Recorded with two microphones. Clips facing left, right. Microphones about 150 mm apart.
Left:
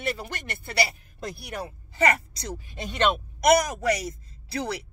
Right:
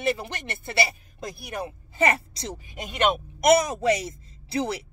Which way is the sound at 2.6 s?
15° right (ahead or behind).